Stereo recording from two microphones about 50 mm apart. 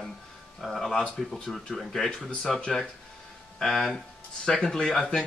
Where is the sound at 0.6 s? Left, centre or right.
Centre.